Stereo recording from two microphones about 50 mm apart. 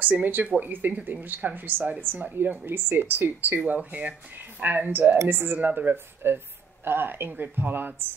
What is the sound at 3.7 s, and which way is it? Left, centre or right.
A woman's voice, right.